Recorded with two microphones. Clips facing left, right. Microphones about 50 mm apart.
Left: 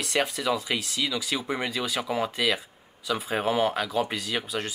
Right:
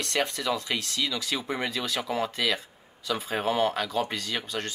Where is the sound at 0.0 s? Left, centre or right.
Centre.